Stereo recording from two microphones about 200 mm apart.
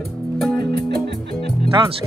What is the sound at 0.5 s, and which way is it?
Music, 55° right (ahead or behind).